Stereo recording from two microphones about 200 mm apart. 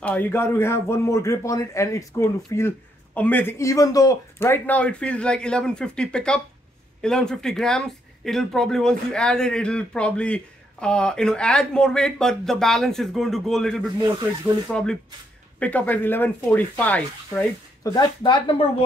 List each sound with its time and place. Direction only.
0.0 s a man's voice: 10° left (ahead or behind)
17.9 s speech: 25° left (ahead or behind)